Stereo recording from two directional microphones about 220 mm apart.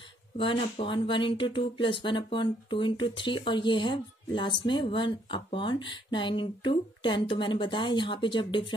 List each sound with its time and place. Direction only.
0.4 s speech: 25° left (ahead or behind)